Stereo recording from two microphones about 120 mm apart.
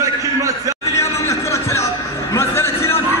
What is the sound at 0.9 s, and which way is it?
Music, 25° left (ahead or behind).